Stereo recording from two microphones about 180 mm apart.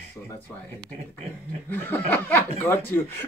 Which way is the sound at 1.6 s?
10° left (ahead or behind).